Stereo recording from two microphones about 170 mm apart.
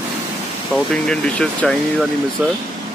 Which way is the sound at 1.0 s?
5° left (ahead or behind).